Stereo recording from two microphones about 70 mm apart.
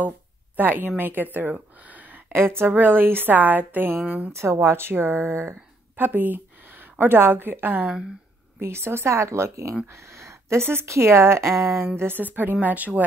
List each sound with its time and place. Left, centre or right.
0.6 s a woman's voice: right
4.3 s a woman's voice: right